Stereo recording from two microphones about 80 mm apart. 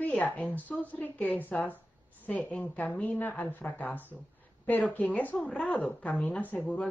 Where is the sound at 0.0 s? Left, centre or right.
Centre.